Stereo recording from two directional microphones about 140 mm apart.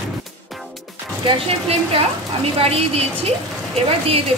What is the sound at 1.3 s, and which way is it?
Speech, 45° right (ahead or behind).